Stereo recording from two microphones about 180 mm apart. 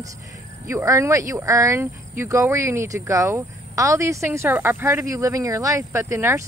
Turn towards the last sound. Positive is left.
turn(degrees=-15)  # may be behind; listen again after turning